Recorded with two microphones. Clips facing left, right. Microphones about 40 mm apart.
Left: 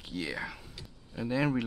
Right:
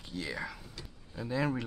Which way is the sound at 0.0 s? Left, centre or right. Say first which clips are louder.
Left 2 dB; centre.